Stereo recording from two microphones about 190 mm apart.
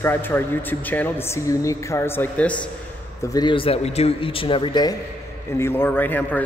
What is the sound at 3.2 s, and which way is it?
Speech, 20° left (ahead or behind).